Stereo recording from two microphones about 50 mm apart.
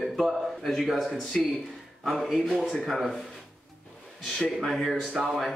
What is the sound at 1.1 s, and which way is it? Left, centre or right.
Speech, centre.